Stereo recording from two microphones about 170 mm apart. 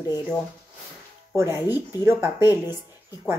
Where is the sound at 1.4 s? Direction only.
15° right (ahead or behind).